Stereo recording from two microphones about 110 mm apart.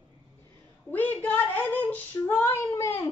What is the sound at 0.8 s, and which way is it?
Female singing, 15° left (ahead or behind).